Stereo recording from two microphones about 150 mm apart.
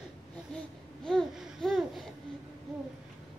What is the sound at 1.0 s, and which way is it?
Babbling, centre (ahead or behind).